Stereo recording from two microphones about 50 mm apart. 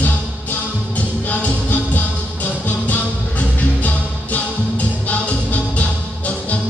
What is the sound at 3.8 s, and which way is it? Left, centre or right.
Music, left.